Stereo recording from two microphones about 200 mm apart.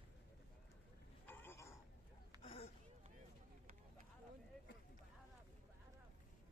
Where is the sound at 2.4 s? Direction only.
30° left (ahead or behind).